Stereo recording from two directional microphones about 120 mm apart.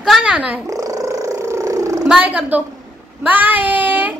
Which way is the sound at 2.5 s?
15° right (ahead or behind).